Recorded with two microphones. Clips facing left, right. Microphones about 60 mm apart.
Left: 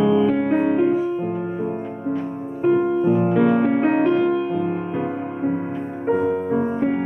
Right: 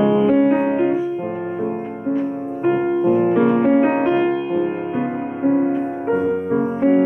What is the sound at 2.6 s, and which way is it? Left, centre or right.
Music, centre.